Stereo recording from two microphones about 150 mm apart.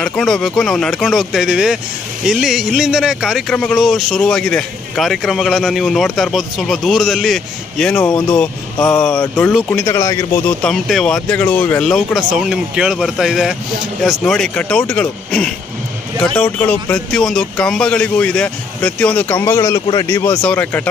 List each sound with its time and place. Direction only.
0.0 s speech: 5° left (ahead or behind)
9.7 s speech: 15° left (ahead or behind)
10.6 s speech: centre (ahead or behind)
16.5 s speech: 10° left (ahead or behind)